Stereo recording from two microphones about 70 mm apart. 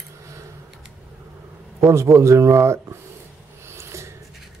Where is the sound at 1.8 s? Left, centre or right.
Right.